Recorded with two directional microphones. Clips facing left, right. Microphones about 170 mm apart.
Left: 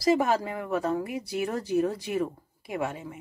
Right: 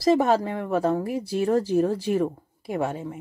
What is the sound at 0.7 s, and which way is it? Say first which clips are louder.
Speech: right 4 dB; 30° right (ahead or behind).